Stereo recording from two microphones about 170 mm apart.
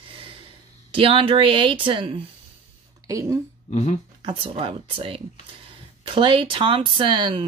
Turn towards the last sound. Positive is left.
turn(degrees=-30)  # may be behind; listen again after turning